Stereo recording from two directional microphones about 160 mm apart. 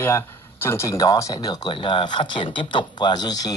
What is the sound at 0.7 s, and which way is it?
Speech, 20° left (ahead or behind).